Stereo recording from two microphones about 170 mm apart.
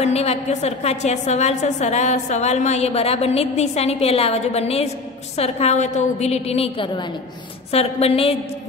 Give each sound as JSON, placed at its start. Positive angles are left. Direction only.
{"t": 0.0, "sound": "a woman's voice", "side_deg": 40}